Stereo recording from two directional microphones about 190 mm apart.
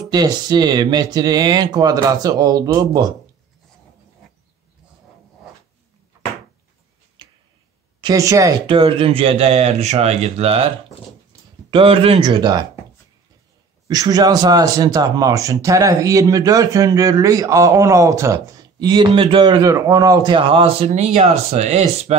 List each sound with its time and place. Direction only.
0.1 s speech: 20° right (ahead or behind)
7.2 s tick-tock: 25° right (ahead or behind)
8.0 s speech: 20° right (ahead or behind)
11.7 s speech: 30° right (ahead or behind)
13.8 s speech: 20° right (ahead or behind)